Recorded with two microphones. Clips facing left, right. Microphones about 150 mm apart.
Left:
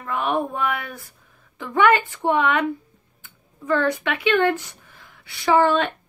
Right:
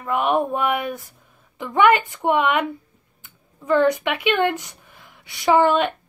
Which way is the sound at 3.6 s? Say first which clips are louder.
Right 4 dB; 15° right (ahead or behind).